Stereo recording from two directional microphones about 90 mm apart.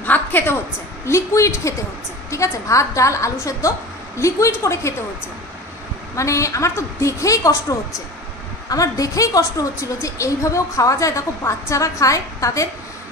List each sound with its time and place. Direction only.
0.0 s a sound: 20° left (ahead or behind)
1.0 s a woman's voice: 35° left (ahead or behind)
6.1 s a woman's voice: 35° left (ahead or behind)
8.6 s a woman's voice: 40° left (ahead or behind)